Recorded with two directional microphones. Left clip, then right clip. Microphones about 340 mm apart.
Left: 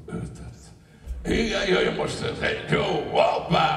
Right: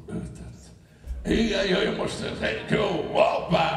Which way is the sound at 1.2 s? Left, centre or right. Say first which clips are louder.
Even; left.